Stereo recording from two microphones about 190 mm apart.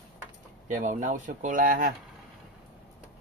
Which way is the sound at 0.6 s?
40° right (ahead or behind).